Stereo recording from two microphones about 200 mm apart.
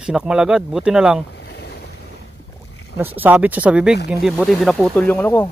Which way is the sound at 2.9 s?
10° right (ahead or behind).